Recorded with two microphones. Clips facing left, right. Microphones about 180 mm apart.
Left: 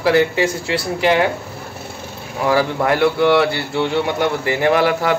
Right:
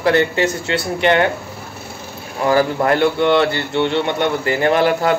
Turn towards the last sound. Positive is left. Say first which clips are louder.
# even
turn(degrees=5)  # may be behind; listen again after turning